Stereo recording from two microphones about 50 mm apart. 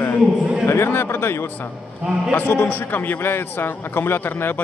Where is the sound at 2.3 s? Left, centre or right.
Left.